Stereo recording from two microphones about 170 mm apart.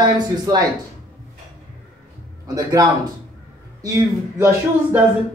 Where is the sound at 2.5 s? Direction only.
20° right (ahead or behind).